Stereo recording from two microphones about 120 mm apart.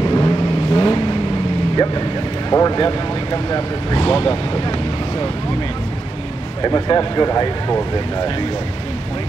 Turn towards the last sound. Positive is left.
turn(degrees=35)  # may be behind; listen again after turning